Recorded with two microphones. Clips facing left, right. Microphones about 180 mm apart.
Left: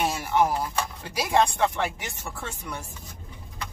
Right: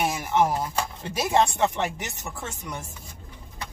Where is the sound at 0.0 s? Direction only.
20° right (ahead or behind).